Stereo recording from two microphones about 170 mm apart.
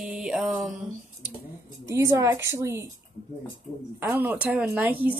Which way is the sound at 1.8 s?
20° right (ahead or behind).